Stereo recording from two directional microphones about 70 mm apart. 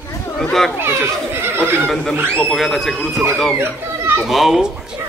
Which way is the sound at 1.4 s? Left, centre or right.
Right.